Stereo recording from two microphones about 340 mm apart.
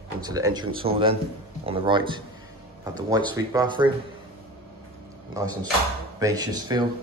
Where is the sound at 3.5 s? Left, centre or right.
Centre.